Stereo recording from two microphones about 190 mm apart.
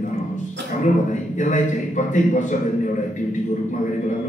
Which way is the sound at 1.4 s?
40° left (ahead or behind).